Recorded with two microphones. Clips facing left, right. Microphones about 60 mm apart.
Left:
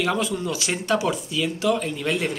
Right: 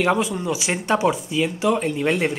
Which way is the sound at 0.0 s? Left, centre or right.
Right.